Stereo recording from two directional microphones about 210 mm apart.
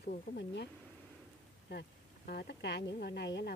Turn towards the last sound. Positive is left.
turn(degrees=50)  # may be behind; listen again after turning